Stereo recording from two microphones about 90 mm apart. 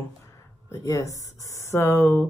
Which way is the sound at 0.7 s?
35° left (ahead or behind).